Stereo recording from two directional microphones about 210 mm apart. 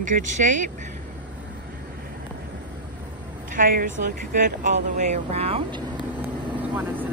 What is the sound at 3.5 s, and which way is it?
Speech, 40° right (ahead or behind).